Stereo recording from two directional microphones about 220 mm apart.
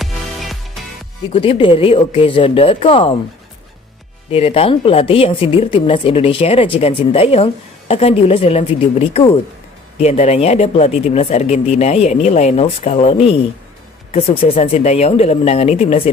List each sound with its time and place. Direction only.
0.0 s music: centre (ahead or behind)
1.3 s speech: 25° left (ahead or behind)
4.3 s speech: 25° left (ahead or behind)